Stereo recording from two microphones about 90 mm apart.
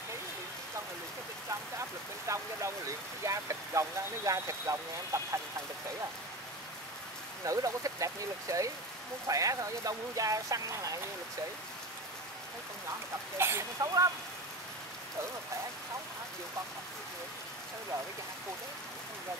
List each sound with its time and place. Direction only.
2.2 s speech: 35° right (ahead or behind)
7.4 s speech: 40° right (ahead or behind)
13.4 s speech: 30° right (ahead or behind)